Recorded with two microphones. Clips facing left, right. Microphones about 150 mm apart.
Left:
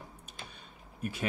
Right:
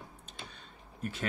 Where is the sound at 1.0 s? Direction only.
10° left (ahead or behind).